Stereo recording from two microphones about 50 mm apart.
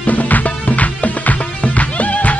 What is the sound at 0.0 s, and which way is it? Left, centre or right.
Music, left.